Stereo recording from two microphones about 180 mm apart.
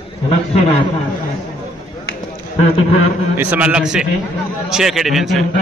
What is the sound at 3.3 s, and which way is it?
A man's voice, 10° right (ahead or behind).